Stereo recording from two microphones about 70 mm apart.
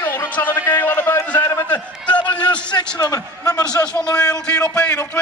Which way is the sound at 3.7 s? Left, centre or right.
Centre.